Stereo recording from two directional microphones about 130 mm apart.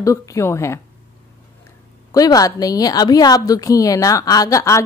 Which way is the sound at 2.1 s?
30° left (ahead or behind).